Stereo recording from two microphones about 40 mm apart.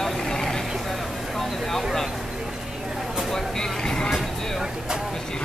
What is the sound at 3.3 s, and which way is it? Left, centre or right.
Vehicle, centre.